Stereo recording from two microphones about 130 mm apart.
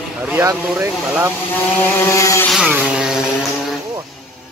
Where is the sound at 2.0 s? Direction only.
20° left (ahead or behind).